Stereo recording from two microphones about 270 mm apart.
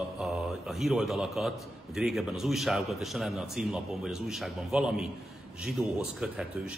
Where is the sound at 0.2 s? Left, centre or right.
Centre.